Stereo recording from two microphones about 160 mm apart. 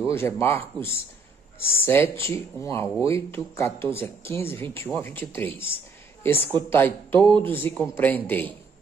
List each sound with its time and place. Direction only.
0.0 s speech: 15° left (ahead or behind)